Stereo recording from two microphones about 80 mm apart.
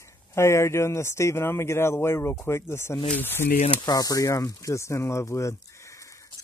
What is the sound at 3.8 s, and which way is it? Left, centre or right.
Speech, left.